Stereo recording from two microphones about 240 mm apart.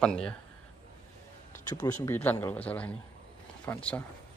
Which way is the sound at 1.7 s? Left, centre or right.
Centre.